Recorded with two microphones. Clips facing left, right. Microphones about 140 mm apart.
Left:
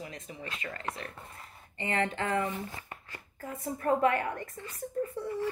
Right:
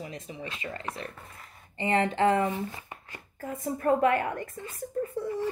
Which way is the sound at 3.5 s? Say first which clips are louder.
Right 3 dB; 40° right (ahead or behind).